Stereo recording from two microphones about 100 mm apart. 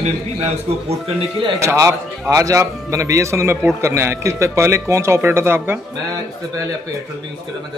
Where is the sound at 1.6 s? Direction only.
30° right (ahead or behind).